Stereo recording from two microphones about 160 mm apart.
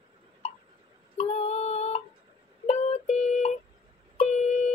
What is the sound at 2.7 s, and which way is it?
Music, 45° left (ahead or behind).